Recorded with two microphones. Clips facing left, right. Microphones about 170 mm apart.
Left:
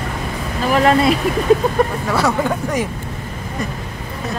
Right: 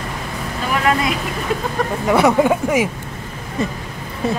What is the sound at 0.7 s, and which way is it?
Speech, 35° left (ahead or behind).